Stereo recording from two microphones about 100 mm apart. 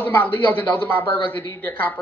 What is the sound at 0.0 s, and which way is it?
A woman's voice, 20° left (ahead or behind).